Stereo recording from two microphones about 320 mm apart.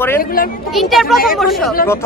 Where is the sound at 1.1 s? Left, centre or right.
Left.